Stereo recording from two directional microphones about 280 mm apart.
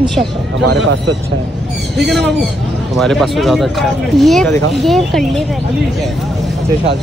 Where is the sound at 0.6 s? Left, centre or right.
Right.